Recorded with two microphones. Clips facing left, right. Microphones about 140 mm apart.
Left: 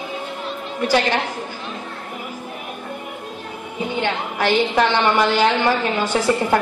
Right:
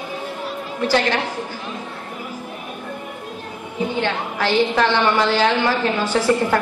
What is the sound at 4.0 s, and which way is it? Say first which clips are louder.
A woman's voice: left 3 dB; 15° left (ahead or behind).